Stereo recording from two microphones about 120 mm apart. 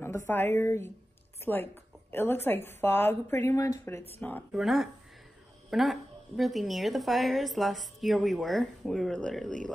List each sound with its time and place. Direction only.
0.3 s a woman's voice: 20° left (ahead or behind)
4.2 s speech: 15° left (ahead or behind)
4.5 s a woman's voice: centre (ahead or behind)